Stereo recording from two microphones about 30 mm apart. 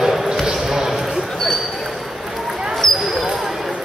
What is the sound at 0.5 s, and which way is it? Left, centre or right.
Basketball bounce, centre.